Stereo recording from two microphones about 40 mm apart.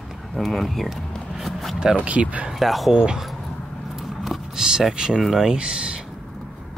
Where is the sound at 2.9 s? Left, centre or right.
Right.